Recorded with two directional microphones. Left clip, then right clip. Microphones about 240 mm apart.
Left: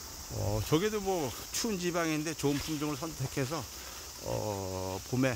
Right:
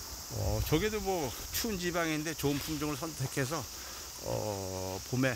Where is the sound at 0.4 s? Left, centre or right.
Centre.